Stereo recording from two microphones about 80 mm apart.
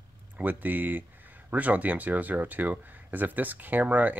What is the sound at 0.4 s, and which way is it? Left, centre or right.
Speech, right.